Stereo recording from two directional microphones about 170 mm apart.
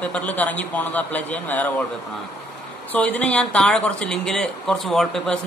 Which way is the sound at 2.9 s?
10° left (ahead or behind).